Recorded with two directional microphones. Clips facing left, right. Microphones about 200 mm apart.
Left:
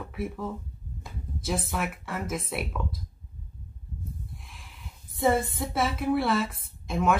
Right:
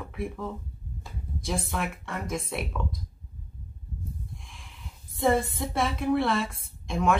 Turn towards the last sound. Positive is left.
turn(degrees=5)  # may be behind; listen again after turning